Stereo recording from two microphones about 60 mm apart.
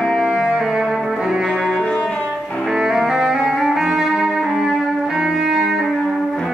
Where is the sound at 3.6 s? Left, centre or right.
Centre.